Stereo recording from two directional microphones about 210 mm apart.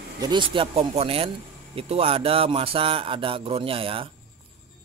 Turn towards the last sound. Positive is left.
turn(degrees=-25)  # may be behind; listen again after turning